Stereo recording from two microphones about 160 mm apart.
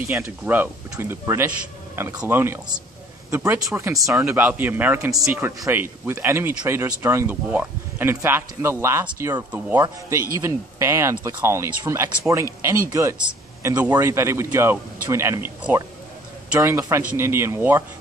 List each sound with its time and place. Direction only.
0.1 s speech: 15° right (ahead or behind)
4.0 s speech: centre (ahead or behind); by 12.4 s 20° right (ahead or behind)
13.6 s speech: 15° right (ahead or behind)
16.5 s speech: 20° right (ahead or behind)